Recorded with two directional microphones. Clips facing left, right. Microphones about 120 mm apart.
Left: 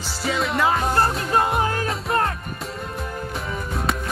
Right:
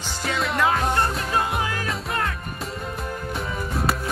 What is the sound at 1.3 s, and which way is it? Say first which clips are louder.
Music: left 4 dB; 40° left (ahead or behind).